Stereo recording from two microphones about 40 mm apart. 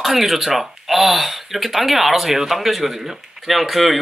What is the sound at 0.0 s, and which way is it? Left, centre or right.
Speech, centre.